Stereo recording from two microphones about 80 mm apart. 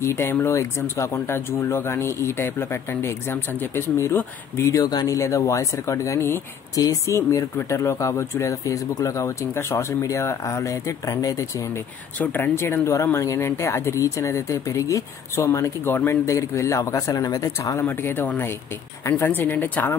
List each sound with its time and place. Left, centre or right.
0.0 s speech: left
4.8 s speech: left
6.7 s speech: left
12.2 s speech: left
15.8 s speech: left
17.8 s speech: left